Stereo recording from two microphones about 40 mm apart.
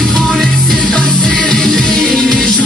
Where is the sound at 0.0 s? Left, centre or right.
Centre.